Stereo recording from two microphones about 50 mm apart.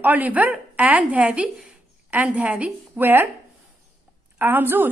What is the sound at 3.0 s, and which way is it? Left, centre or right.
Speech, right.